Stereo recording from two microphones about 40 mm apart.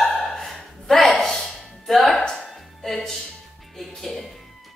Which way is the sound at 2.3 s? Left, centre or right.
Centre.